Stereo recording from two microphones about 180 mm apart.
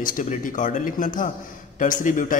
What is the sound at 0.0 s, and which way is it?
A man's voice, 45° left (ahead or behind).